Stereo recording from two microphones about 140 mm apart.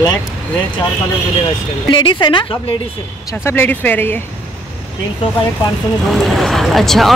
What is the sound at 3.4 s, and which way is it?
Speech, 15° left (ahead or behind).